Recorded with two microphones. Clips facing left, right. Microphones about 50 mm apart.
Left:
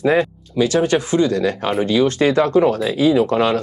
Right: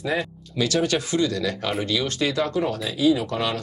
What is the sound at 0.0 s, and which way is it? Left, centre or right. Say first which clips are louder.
Speech: left 10 dB; left.